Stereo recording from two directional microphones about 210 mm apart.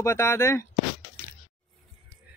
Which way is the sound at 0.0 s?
15° left (ahead or behind).